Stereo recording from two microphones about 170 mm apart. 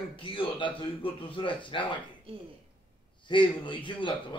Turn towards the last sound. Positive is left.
turn(degrees=30)  # may be behind; listen again after turning